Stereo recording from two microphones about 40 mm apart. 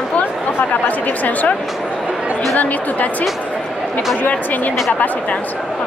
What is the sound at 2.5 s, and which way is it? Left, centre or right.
Speech, left.